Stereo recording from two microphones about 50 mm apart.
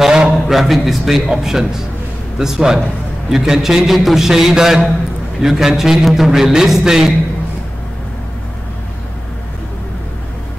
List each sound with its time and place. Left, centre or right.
0.0 s a man's voice: centre
0.5 s a man's voice: centre